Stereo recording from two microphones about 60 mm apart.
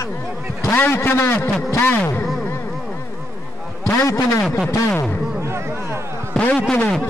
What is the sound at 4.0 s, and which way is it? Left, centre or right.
Speech, left.